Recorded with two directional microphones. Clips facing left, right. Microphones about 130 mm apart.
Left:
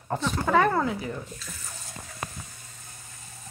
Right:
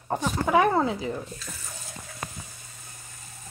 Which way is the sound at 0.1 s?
10° right (ahead or behind).